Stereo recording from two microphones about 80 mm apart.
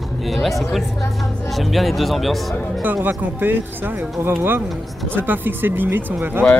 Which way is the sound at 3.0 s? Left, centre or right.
Right.